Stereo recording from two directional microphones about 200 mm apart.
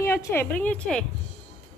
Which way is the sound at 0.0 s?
15° left (ahead or behind).